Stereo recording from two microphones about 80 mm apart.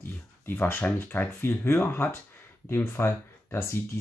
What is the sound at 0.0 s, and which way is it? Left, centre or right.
Speech, left.